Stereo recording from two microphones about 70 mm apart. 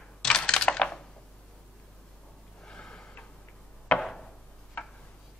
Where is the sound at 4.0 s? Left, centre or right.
Centre.